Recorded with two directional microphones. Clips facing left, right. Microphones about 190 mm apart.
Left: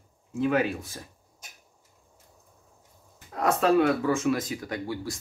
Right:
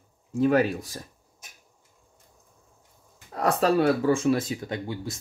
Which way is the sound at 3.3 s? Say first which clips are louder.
Even; 35° right (ahead or behind).